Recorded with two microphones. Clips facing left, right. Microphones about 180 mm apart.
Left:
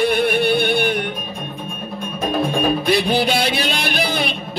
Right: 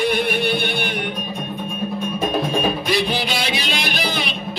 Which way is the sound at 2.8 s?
55° left (ahead or behind).